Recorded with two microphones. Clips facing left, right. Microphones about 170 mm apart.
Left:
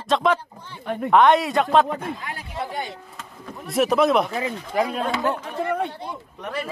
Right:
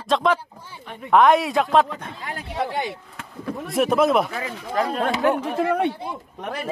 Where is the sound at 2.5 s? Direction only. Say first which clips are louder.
Right 4 dB; 85° right.